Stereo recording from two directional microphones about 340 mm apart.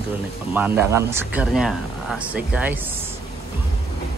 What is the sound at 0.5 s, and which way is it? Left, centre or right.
Speech, centre.